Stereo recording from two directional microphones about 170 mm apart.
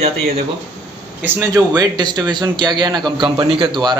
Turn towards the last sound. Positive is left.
turn(degrees=-25)  # may be behind; listen again after turning